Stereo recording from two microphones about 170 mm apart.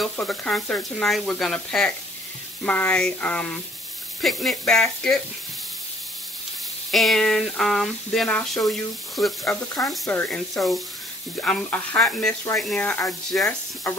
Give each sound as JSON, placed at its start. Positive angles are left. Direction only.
{"t": 0.0, "sound": "speech", "side_deg": 5}
{"t": 6.9, "sound": "speech", "side_deg": 0}
{"t": 9.4, "sound": "speech", "side_deg": 20}
{"t": 9.8, "sound": "speech", "side_deg": 5}